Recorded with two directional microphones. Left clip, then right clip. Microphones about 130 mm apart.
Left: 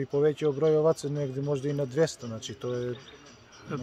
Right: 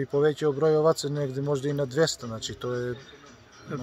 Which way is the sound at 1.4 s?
10° right (ahead or behind).